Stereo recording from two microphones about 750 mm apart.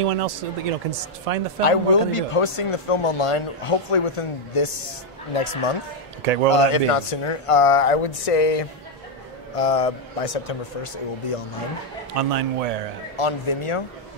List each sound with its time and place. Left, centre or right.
0.0 s speech: right
1.6 s speech: left
6.2 s a man's voice: right
6.5 s speech: left
12.2 s a man's voice: right
13.1 s speech: left